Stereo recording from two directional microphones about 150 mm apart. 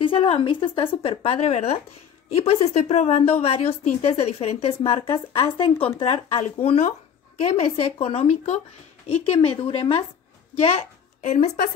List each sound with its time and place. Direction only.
0.0 s a woman's voice: 40° left (ahead or behind)
11.2 s a woman's voice: 55° left (ahead or behind)